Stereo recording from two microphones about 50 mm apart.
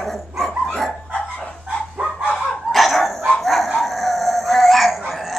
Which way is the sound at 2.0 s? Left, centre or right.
Centre.